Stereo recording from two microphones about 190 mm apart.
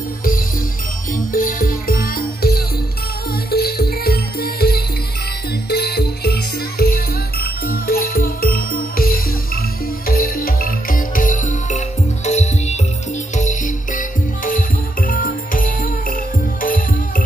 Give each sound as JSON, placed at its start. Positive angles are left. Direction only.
{"t": 1.1, "sound": "music", "side_deg": 45}